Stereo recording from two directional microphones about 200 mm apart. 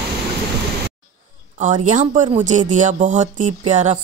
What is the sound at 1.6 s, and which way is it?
Speech, 40° right (ahead or behind).